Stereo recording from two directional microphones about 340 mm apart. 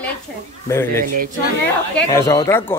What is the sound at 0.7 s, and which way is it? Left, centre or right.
Speech, centre.